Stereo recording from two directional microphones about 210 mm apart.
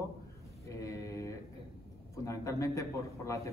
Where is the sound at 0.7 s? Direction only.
15° left (ahead or behind).